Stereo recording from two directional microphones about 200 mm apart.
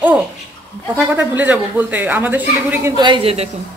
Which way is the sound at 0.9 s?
10° right (ahead or behind).